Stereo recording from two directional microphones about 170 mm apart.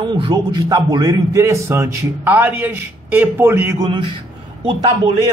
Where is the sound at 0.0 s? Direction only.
30° right (ahead or behind); by 3.7 s 15° right (ahead or behind).